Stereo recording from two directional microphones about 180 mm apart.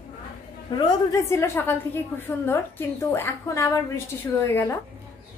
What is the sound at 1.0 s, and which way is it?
A woman's voice, 15° left (ahead or behind).